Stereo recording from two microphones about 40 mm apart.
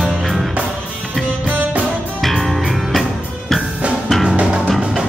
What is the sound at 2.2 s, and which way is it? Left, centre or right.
Music, centre.